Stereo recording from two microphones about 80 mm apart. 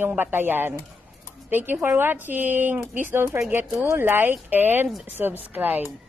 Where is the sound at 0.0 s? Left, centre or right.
Right.